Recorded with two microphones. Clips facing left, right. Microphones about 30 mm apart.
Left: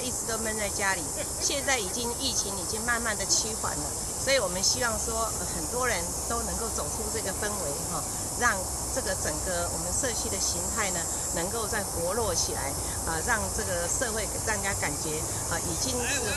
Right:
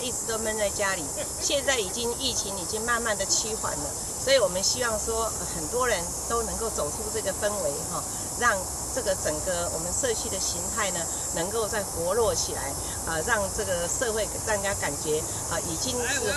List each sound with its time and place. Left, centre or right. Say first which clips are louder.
0.4 s speech: right 5 dB; centre